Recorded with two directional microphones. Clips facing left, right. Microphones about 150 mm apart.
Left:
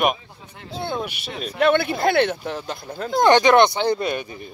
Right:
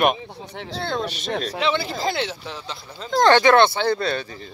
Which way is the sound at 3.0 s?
15° left (ahead or behind).